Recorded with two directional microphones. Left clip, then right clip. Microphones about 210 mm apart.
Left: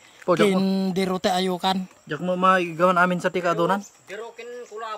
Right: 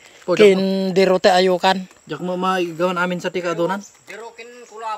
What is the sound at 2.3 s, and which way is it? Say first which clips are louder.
Speech: left 1 dB; 35° left (ahead or behind).